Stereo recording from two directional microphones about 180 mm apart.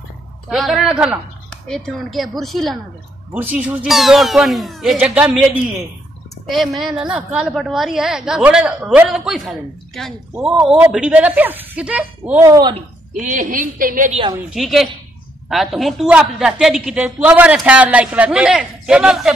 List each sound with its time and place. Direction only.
0.5 s a man's voice: centre (ahead or behind); by 12.7 s 20° right (ahead or behind)
13.1 s a woman's voice: 45° right (ahead or behind)
14.5 s a man's voice: centre (ahead or behind)